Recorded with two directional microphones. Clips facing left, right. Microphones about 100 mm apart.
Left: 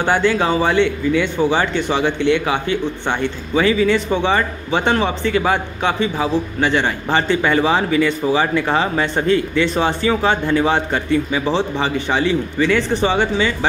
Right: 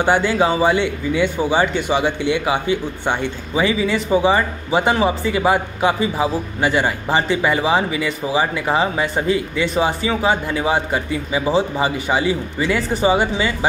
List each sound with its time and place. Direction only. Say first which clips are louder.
0.0 s a man's voice: even; 15° right (ahead or behind)